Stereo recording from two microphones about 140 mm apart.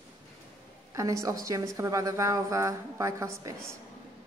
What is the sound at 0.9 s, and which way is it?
A woman's voice, 25° right (ahead or behind).